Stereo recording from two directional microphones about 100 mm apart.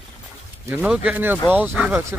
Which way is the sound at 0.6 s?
20° right (ahead or behind).